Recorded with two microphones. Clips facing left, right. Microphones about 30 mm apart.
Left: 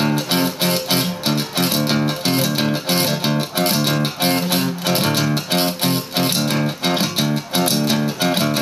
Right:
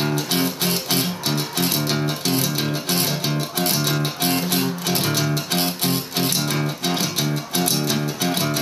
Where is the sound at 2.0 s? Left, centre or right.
Left.